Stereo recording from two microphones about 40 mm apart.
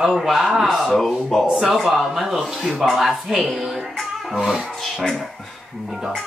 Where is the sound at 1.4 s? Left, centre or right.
Centre.